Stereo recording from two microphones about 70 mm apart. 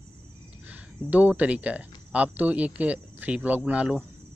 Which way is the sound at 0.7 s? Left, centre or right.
Right.